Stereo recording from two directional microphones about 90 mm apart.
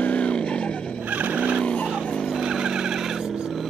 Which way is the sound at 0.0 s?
15° left (ahead or behind).